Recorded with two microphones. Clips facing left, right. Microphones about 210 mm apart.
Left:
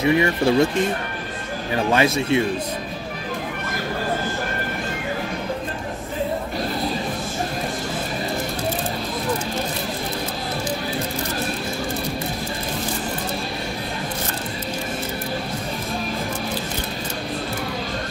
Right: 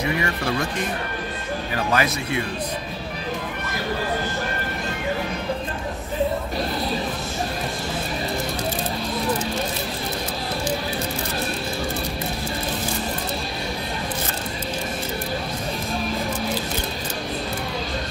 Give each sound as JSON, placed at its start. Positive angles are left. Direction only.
{"t": 0.0, "sound": "speech", "side_deg": 25}
{"t": 2.0, "sound": "speech", "side_deg": 25}